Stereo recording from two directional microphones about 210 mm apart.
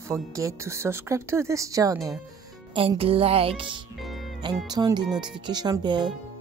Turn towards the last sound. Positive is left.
turn(degrees=-20)  # may be behind; listen again after turning